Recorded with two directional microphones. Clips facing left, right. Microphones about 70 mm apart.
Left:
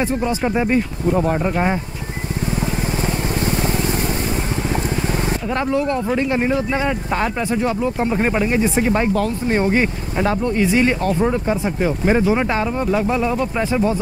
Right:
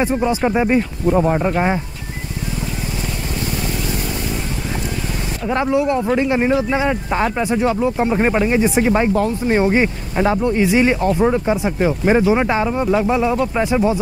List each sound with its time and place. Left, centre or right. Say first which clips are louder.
0.0 s speech: right 3 dB; centre
2.4 s vehicle: left 4 dB; left
5.5 s speech: right 4 dB; centre